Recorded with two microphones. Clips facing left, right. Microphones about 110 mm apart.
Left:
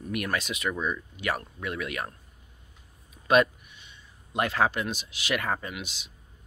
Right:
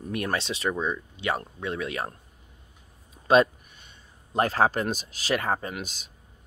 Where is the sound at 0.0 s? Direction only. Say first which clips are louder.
Right 1 dB; 30° right (ahead or behind).